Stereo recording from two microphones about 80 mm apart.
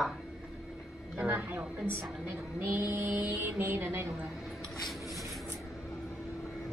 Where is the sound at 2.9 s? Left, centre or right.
Right.